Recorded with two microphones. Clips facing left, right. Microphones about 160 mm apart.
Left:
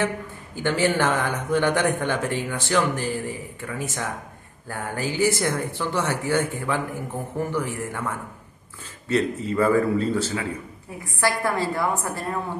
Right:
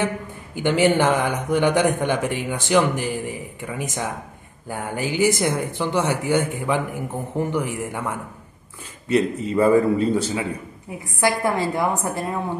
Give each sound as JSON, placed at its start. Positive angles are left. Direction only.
{"t": 0.6, "sound": "a man's voice", "side_deg": -15}